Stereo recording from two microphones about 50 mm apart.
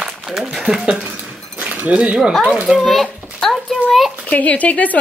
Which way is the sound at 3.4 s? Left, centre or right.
Centre.